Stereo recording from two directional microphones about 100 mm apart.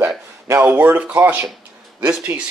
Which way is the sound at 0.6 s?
15° right (ahead or behind).